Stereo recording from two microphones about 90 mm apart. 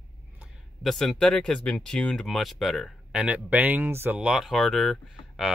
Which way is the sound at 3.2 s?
15° right (ahead or behind).